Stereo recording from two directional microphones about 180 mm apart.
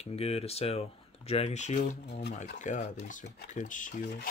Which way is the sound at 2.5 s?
45° left (ahead or behind).